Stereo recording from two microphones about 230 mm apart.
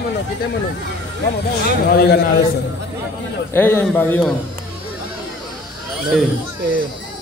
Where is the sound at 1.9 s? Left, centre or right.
Left.